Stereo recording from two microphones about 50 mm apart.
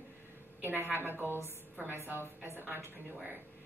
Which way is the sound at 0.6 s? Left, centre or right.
Right.